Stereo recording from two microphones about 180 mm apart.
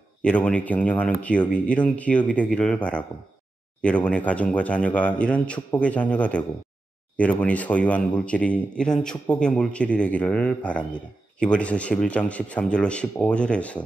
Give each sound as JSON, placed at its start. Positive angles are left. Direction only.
{"t": 0.2, "sound": "speech", "side_deg": 5}